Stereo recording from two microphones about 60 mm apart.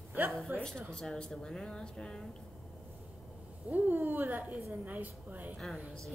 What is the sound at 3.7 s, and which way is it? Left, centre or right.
A woman's voice, right.